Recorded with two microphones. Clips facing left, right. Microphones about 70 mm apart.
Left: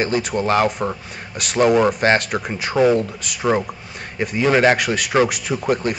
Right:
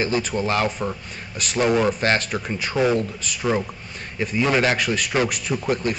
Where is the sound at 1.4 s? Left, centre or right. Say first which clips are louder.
Left 1 dB; left.